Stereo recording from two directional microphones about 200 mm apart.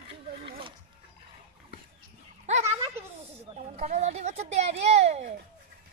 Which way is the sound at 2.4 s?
35° right (ahead or behind).